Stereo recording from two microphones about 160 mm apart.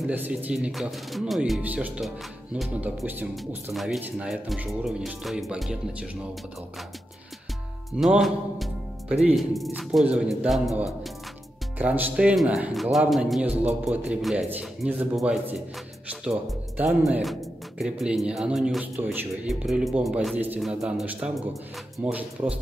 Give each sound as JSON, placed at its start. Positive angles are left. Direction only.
{"t": 0.0, "sound": "speech", "side_deg": -10}
{"t": 3.7, "sound": "speech", "side_deg": 0}
{"t": 8.0, "sound": "speech", "side_deg": 0}
{"t": 11.8, "sound": "speech", "side_deg": -10}
{"t": 20.3, "sound": "speech", "side_deg": -10}